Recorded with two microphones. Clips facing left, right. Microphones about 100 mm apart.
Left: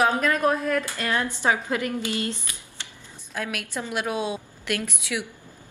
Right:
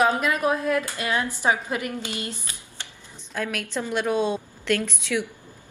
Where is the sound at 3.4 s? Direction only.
10° left (ahead or behind).